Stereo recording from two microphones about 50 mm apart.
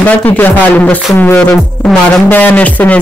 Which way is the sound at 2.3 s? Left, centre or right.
Left.